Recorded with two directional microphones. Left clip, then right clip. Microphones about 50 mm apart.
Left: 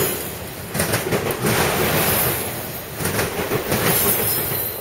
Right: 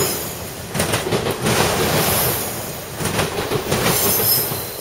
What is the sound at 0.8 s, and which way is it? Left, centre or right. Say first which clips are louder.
Train: right 1 dB; right.